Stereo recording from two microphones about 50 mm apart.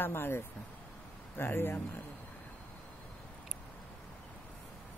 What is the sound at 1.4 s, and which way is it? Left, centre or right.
Speech, left.